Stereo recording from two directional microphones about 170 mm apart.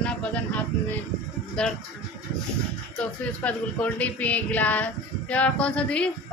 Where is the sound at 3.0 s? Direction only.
5° left (ahead or behind).